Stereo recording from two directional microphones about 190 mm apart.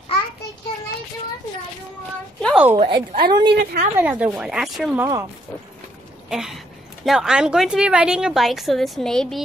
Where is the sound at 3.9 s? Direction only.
10° right (ahead or behind).